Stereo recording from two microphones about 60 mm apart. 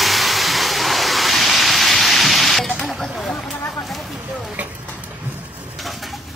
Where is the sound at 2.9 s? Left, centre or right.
Centre.